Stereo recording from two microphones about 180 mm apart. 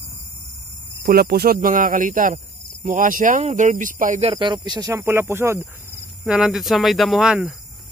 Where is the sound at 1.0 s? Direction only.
60° right (ahead or behind); by 4.3 s 45° right (ahead or behind).